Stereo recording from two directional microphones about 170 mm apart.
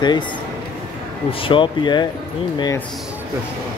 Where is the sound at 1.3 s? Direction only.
30° left (ahead or behind).